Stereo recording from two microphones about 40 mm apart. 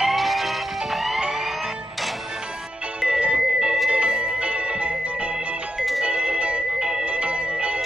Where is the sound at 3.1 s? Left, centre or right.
Right.